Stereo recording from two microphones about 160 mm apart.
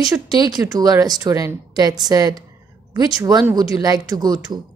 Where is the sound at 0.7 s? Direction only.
25° right (ahead or behind).